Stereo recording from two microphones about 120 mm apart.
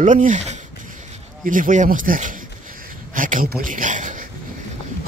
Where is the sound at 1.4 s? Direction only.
90° right.